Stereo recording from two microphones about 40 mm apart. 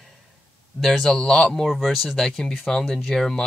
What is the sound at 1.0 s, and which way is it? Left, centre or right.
Speech, centre.